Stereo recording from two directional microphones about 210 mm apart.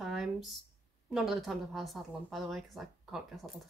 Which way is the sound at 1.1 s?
Centre (ahead or behind).